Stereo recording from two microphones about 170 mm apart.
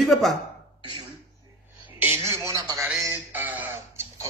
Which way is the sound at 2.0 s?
15° right (ahead or behind).